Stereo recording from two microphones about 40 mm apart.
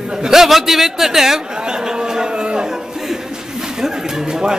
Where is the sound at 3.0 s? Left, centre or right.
Centre.